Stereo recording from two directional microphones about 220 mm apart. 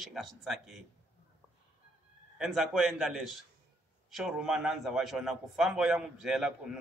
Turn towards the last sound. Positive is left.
turn(degrees=-5)  # may be behind; listen again after turning